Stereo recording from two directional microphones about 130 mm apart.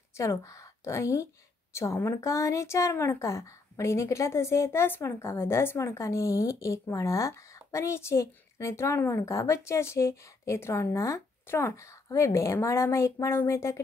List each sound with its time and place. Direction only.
0.2 s a woman's voice: 25° left (ahead or behind)